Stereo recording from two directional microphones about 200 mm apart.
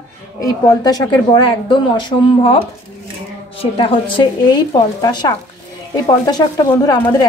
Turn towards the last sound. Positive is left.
turn(degrees=20)  # may be behind; listen again after turning